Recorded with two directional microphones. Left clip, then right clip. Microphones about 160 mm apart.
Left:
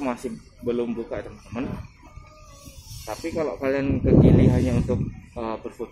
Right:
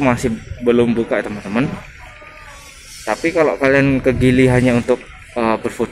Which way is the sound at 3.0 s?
15° right (ahead or behind).